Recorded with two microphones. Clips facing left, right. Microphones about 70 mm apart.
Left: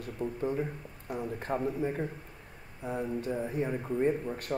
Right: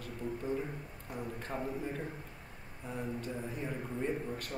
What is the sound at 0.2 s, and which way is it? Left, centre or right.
Speech, left.